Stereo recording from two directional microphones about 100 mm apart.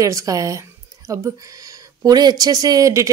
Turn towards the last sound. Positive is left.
turn(degrees=-35)  # may be behind; listen again after turning